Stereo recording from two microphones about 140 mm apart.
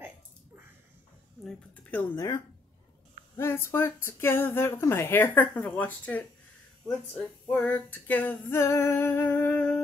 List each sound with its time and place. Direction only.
1.9 s speech: 15° left (ahead or behind)
3.3 s speech: 15° left (ahead or behind)